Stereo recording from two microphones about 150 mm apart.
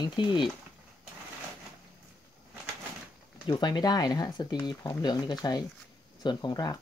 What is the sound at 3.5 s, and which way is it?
Speech, 30° left (ahead or behind).